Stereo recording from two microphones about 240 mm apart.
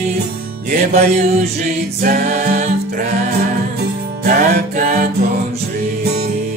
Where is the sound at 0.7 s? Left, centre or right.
Right.